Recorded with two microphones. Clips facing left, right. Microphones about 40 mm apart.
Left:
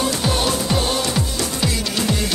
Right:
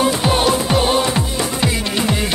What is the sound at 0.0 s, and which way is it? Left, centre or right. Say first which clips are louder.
Music: right 5 dB; right.